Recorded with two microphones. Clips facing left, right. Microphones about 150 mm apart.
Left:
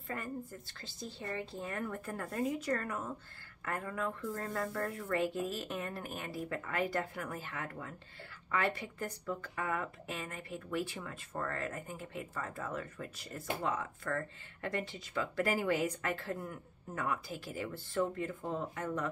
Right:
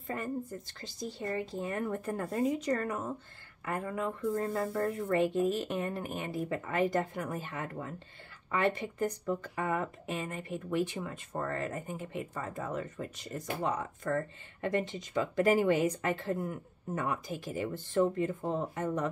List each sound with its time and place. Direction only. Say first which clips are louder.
0.7 s speech: right 5 dB; 15° right (ahead or behind)